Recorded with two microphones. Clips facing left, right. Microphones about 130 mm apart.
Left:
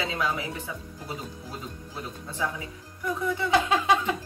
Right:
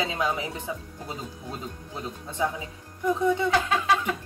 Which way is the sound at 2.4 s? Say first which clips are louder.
Right 4 dB; 20° right (ahead or behind).